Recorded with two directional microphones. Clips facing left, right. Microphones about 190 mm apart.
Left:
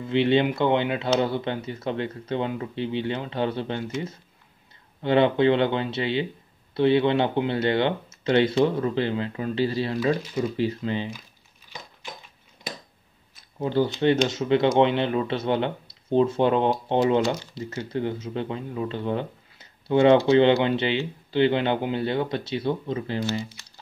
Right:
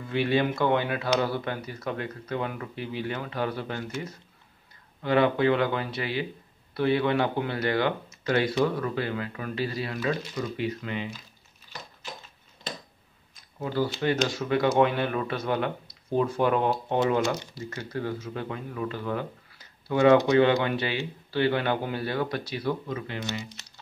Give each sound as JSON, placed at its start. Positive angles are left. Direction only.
{"t": 0.0, "sound": "speech", "side_deg": 25}
{"t": 5.0, "sound": "speech", "side_deg": 25}
{"t": 11.7, "sound": "a sound", "side_deg": 15}
{"t": 13.6, "sound": "speech", "side_deg": 25}